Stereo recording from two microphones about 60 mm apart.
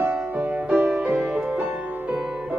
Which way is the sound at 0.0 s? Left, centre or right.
Right.